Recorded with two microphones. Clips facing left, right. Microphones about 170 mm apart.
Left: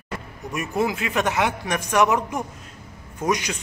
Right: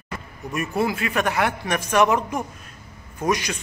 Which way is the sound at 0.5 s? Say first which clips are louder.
Even; 15° left (ahead or behind).